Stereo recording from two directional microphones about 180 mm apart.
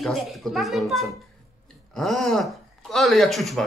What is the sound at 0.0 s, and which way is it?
Speech, centre (ahead or behind).